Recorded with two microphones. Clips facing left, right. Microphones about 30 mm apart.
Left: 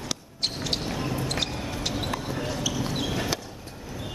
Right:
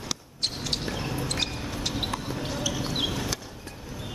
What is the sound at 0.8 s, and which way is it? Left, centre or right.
Basketball bounce, centre.